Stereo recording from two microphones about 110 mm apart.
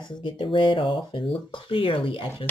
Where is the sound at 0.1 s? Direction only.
45° left (ahead or behind).